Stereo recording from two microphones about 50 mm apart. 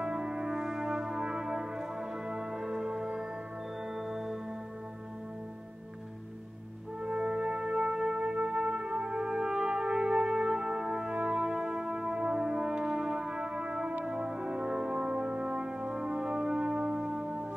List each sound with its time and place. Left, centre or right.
0.0 s brass instrument: centre
3.9 s music: centre
7.0 s music: centre
8.5 s brass instrument: centre